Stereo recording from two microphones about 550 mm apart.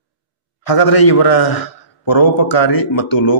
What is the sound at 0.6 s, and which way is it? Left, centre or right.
Speech, left.